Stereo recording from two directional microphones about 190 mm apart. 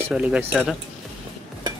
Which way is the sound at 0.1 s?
5° right (ahead or behind).